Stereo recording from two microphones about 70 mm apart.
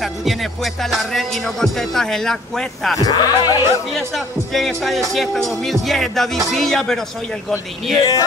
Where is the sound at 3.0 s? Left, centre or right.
Left.